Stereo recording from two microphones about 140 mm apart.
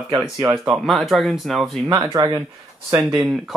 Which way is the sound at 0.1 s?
20° right (ahead or behind).